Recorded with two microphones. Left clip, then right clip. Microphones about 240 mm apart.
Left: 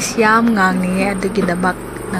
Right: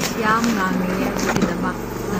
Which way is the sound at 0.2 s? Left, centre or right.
Left.